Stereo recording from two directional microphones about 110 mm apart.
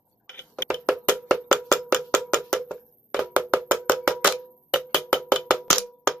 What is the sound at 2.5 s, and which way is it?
Music, 5° left (ahead or behind).